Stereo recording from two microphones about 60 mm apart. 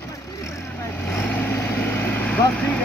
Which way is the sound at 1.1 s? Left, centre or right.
Left.